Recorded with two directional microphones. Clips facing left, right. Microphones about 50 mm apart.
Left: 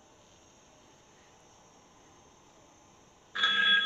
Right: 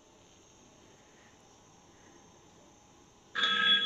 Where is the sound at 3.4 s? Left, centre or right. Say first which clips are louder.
Left 2 dB; centre.